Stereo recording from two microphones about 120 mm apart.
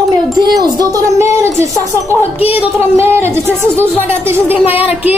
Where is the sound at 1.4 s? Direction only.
25° right (ahead or behind).